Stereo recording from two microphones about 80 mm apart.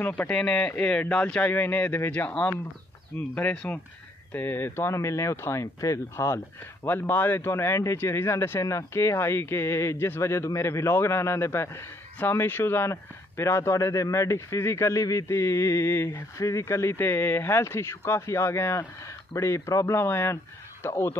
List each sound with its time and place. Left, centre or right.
0.0 s speech: left
0.4 s speech: centre
4.3 s speech: left
20.0 s speech: left